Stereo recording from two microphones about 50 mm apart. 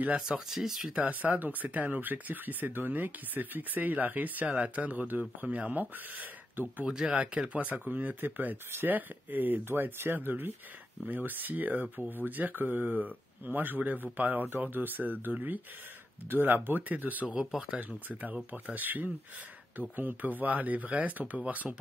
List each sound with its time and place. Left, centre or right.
0.0 s speech: right
0.5 s speech: centre
1.2 s speech: right
6.9 s speech: centre
7.2 s speech: right
7.8 s speech: right
17.4 s speech: centre
17.6 s speech: right